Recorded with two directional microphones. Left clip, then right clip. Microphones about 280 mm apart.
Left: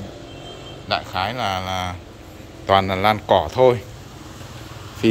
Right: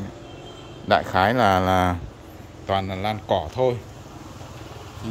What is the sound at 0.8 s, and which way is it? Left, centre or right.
A man's voice, right.